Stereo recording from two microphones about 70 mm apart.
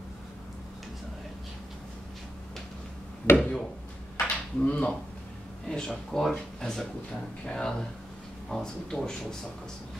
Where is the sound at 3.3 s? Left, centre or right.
Left.